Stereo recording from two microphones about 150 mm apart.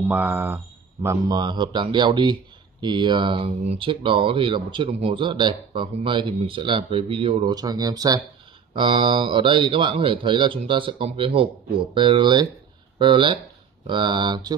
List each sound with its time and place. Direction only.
0.1 s speech: 10° right (ahead or behind)
1.0 s speech: 25° right (ahead or behind)
7.5 s speech: 25° right (ahead or behind)